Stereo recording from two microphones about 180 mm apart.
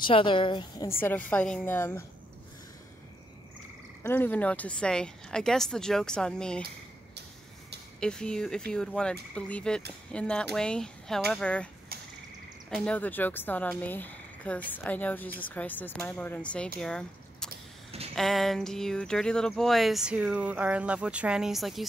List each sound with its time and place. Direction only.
0.0 s a woman's voice: 25° left (ahead or behind)
1.0 s speech: 10° left (ahead or behind)
4.0 s speech: 10° left (ahead or behind)
8.0 s speech: 5° left (ahead or behind)
16.8 s a sound: 5° left (ahead or behind)
18.1 s speech: centre (ahead or behind)